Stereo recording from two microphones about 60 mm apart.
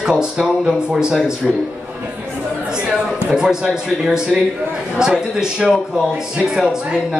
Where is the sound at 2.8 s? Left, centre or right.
Centre.